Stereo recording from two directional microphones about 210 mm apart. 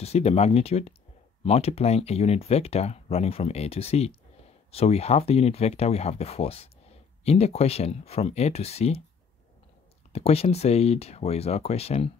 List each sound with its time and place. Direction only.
0.0 s speech: 30° left (ahead or behind)
10.1 s speech: 30° left (ahead or behind)